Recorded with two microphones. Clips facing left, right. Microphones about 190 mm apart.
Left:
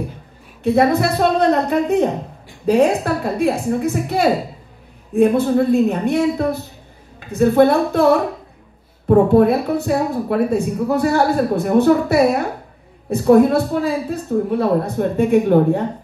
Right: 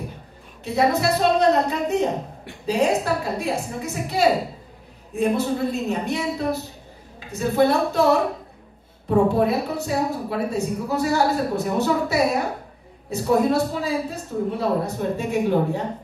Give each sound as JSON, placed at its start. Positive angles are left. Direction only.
{"t": 0.7, "sound": "a woman's voice", "side_deg": 55}